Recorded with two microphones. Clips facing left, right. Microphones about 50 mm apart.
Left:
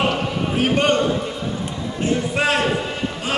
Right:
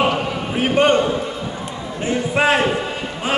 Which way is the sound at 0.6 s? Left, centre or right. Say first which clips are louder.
Right 3 dB; right.